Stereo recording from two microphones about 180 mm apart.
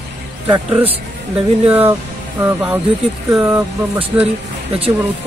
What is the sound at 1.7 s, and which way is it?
Speech, 10° right (ahead or behind).